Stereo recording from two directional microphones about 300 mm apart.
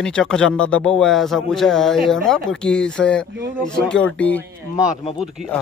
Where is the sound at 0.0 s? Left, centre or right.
Centre.